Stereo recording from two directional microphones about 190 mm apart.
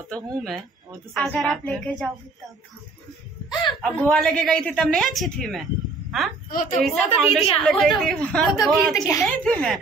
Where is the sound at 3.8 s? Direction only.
5° left (ahead or behind).